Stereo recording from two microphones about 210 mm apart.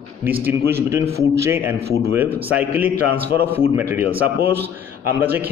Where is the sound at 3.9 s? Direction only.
10° right (ahead or behind).